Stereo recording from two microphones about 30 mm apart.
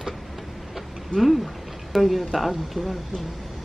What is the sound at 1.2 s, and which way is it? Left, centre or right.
Speech, centre.